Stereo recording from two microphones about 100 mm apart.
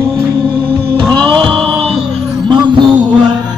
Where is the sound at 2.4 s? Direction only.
50° right (ahead or behind).